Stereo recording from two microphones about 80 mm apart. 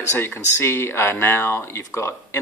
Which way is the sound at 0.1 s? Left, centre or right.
Left.